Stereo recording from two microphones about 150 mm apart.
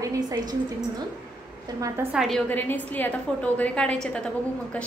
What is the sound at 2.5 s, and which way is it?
A woman's voice, 10° left (ahead or behind).